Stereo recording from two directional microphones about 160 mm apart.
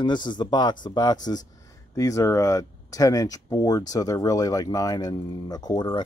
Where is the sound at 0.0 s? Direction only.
30° left (ahead or behind).